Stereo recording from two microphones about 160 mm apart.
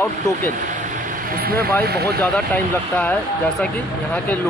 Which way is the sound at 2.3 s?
10° left (ahead or behind).